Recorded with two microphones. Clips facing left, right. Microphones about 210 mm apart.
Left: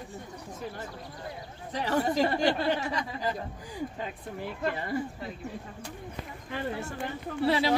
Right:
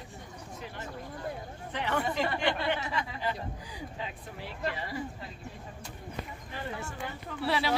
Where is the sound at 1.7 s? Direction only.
35° left (ahead or behind).